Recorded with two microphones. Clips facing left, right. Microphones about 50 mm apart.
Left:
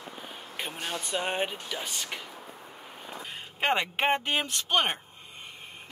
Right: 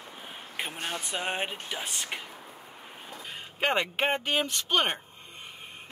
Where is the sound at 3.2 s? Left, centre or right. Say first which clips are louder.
Left 1 dB; centre.